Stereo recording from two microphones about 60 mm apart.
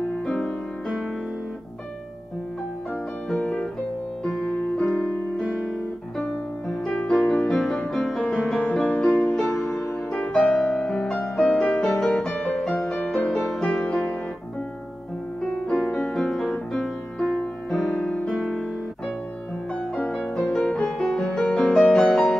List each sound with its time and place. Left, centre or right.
0.3 s music: centre
3.3 s music: centre
9.1 s music: centre
10.7 s music: centre
15.4 s music: centre
17.9 s music: centre
18.3 s music: centre
20.1 s music: centre
21.5 s music: centre
21.7 s music: centre